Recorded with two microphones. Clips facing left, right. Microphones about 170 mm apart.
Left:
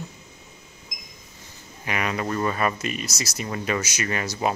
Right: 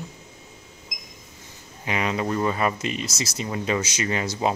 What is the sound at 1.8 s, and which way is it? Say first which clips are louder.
Speech: right 2 dB; 20° right (ahead or behind).